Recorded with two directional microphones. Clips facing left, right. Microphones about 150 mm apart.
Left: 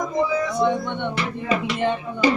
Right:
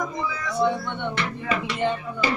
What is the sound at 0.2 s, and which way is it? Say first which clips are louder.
Speech: left 4 dB; 20° left (ahead or behind).